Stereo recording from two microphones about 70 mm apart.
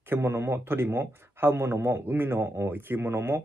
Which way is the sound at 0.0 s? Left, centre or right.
Right.